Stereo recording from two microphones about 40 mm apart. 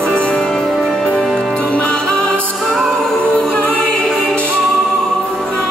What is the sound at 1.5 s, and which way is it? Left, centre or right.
Music, left.